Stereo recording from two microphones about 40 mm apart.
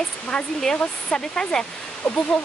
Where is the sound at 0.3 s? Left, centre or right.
Left.